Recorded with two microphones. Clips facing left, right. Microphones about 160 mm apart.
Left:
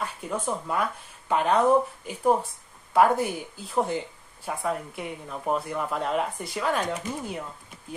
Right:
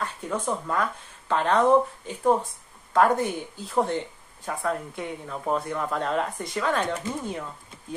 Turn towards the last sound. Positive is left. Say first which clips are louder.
# right 1 dB
turn(degrees=5)  # may be behind; listen again after turning